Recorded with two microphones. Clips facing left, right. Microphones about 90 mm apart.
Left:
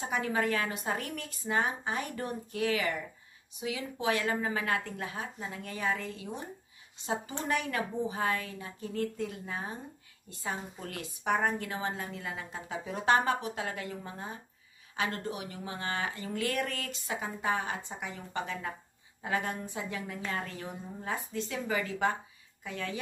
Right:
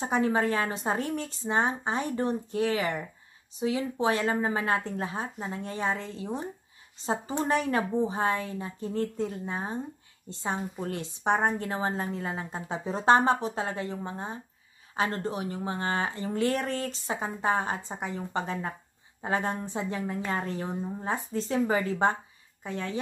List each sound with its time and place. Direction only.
0.0 s a woman's voice: 30° right (ahead or behind)
7.4 s a woman's voice: 35° right (ahead or behind)